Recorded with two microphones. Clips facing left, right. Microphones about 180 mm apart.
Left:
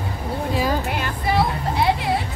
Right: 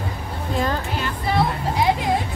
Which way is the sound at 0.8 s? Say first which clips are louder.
Left 1 dB; 60° left (ahead or behind).